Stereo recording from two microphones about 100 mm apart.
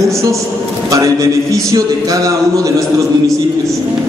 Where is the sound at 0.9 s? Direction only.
35° right (ahead or behind).